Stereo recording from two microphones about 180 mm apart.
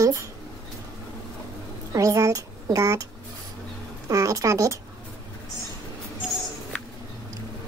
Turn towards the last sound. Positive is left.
turn(degrees=5)  # may be behind; listen again after turning